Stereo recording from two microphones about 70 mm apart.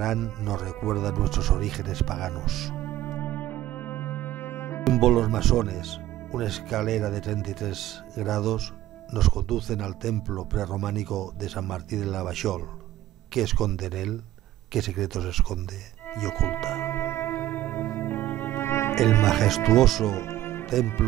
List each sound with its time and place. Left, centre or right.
0.0 s speech: centre
2.7 s music: left
4.8 s speech: centre
16.8 s music: left
19.2 s speech: centre
20.1 s music: left